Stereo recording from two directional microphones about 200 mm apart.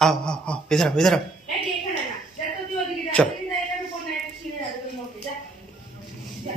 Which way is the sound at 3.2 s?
5° left (ahead or behind).